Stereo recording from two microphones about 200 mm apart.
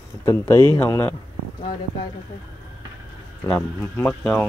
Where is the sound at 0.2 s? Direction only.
10° left (ahead or behind).